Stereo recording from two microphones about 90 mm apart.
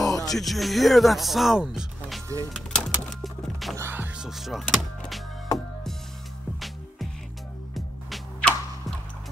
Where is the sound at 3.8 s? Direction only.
25° right (ahead or behind).